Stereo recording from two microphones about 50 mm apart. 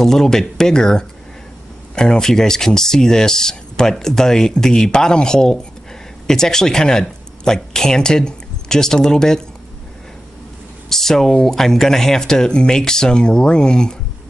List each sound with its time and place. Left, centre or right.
0.0 s speech: centre
10.9 s speech: centre